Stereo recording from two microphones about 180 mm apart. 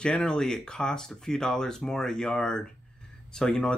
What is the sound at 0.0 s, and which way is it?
Speech, 5° left (ahead or behind).